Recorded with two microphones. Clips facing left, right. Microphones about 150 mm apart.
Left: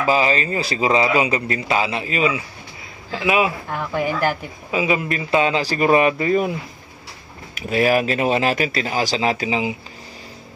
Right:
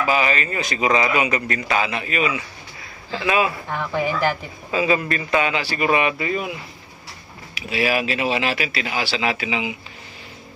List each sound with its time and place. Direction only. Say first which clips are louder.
0.0 s speech: left 2 dB; 30° left (ahead or behind)
3.1 s speech: left 1 dB; 15° left (ahead or behind)
3.9 s speech: left 1 dB; 10° left (ahead or behind); by 6.5 s 40° left (ahead or behind)
7.5 s speech: left 4 dB; 45° left (ahead or behind)